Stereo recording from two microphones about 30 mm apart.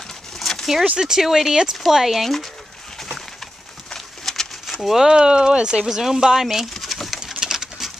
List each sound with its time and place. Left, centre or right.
0.4 s a sound: centre
0.9 s speech: right
1.2 s speech: centre
2.2 s speech: centre
3.9 s bird: centre
4.8 s speech: centre
5.1 s speech: right
5.9 s speech: centre
6.9 s pigeon: centre
7.2 s patter: centre